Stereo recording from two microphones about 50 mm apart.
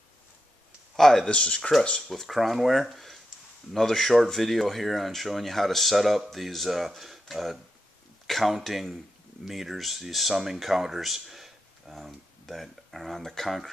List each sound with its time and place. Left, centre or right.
0.9 s speech: centre
1.3 s speech: centre
2.0 s speech: centre